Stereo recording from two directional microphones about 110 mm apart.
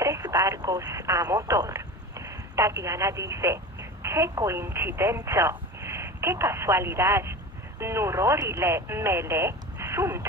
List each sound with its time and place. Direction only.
0.0 s telephone: 35° right (ahead or behind)
0.5 s speech: 35° right (ahead or behind)